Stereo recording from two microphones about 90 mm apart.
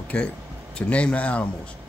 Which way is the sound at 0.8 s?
10° left (ahead or behind).